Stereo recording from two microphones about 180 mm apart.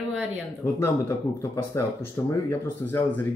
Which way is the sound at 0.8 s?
15° left (ahead or behind).